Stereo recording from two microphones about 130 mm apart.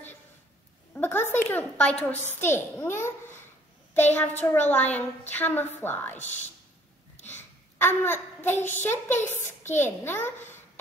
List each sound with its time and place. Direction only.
0.9 s a woman's voice: 15° left (ahead or behind)
4.1 s a child's voice: 15° left (ahead or behind)
7.2 s a woman's voice: 15° left (ahead or behind)